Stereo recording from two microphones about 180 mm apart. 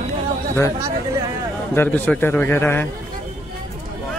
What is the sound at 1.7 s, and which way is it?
A man's voice, 10° left (ahead or behind).